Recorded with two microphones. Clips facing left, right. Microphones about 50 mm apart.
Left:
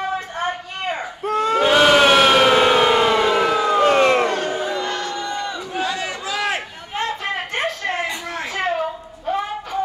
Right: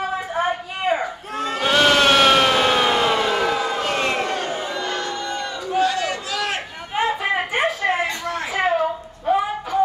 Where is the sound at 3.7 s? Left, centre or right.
Left.